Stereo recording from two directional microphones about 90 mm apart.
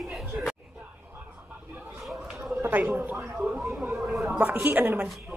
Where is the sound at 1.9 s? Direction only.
Centre (ahead or behind).